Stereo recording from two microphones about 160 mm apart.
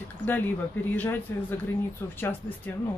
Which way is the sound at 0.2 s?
50° right (ahead or behind).